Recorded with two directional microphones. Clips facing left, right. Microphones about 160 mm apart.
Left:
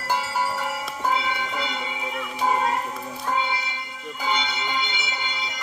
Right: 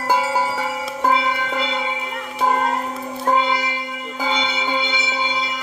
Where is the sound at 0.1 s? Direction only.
90° right.